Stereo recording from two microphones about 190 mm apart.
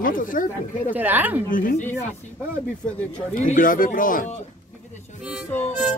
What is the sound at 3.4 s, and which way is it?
Speech, 45° left (ahead or behind).